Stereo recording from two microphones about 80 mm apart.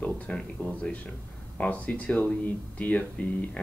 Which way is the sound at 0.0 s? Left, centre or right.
Centre.